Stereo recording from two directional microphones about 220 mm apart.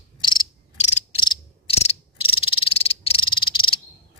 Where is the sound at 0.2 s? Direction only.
20° left (ahead or behind).